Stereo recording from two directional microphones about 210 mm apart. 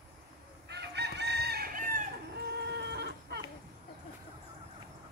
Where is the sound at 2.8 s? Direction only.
50° right (ahead or behind).